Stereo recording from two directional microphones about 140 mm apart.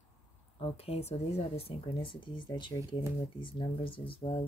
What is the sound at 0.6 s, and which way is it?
Speech, 45° left (ahead or behind).